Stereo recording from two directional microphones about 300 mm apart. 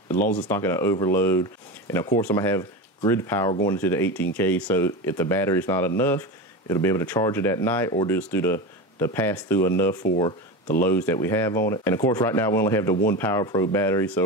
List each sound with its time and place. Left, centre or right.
0.4 s speech: centre